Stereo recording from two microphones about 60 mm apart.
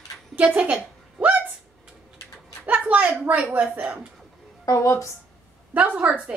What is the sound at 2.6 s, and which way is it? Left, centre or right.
Speech, right.